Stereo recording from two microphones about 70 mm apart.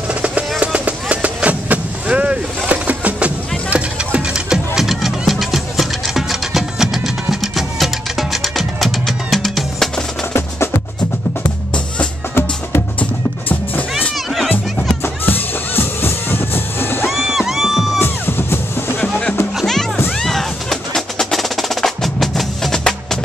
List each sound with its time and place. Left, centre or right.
0.1 s music: centre
0.7 s vehicle: centre
14.1 s music: centre
15.2 s music: left
17.0 s music: centre
18.0 s music: left
18.9 s music: centre